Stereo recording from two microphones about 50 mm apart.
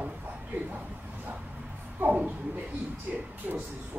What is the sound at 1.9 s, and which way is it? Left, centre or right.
A man's voice, right.